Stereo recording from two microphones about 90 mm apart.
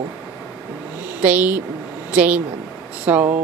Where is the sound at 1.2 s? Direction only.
20° right (ahead or behind).